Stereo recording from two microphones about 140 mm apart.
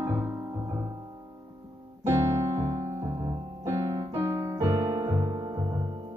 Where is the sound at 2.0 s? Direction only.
20° right (ahead or behind).